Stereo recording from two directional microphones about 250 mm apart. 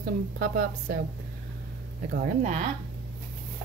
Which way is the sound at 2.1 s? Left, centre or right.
Right.